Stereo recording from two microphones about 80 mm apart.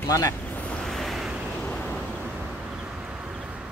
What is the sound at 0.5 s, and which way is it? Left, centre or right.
Vehicle, centre.